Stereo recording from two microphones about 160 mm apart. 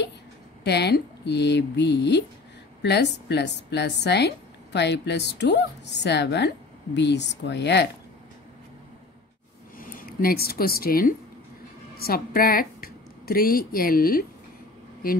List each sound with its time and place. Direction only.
0.7 s speech: 90° left
9.8 s a woman's voice: 60° left (ahead or behind)